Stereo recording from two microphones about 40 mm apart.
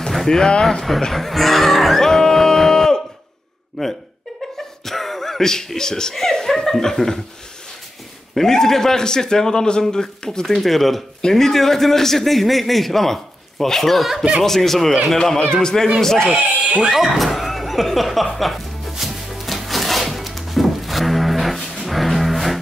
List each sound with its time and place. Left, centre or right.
0.3 s a man's voice: centre
1.1 s a sound: centre
3.8 s speech: centre
8.4 s a man's voice: centre
10.5 s a man's voice: centre
14.0 s speech: centre
14.4 s a man's voice: centre
15.2 s a man's voice: centre
16.3 s speech: right
16.9 s speech: centre
18.2 s music: centre